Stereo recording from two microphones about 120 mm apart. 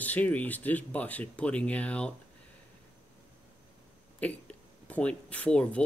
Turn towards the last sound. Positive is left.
turn(degrees=10)  # may be behind; listen again after turning